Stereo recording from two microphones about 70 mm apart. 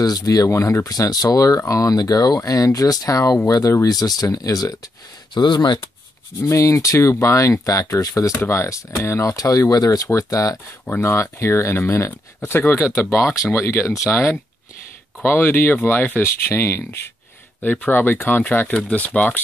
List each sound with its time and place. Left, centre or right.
0.0 s speech: left
0.5 s speech: left
0.8 s speech: left
5.3 s speech: left
6.4 s speech: left
8.4 s speech: left
9.4 s speech: left
10.9 s speech: left
15.2 s speech: left
17.6 s speech: left